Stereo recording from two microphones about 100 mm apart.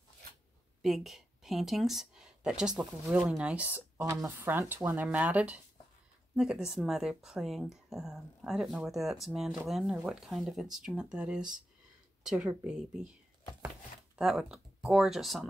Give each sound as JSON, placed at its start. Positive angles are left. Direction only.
{"t": 0.8, "sound": "speech", "side_deg": 0}
{"t": 4.0, "sound": "a woman's voice", "side_deg": -35}
{"t": 4.4, "sound": "speech", "side_deg": -20}
{"t": 14.1, "sound": "speech", "side_deg": -5}